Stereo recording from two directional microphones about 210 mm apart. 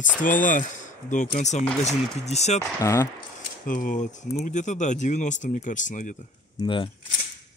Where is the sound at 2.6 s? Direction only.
15° left (ahead or behind).